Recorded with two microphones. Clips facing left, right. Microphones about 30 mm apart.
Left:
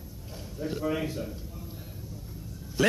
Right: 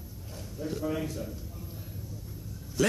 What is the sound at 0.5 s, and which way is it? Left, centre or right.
Speech, centre.